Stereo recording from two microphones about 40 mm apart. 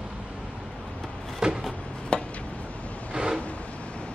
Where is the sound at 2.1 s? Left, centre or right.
Left.